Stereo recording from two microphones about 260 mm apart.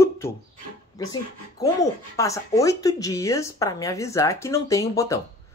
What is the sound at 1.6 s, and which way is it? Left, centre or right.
Speech, centre.